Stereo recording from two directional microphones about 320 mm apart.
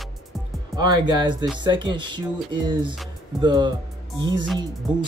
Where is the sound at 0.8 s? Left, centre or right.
Centre.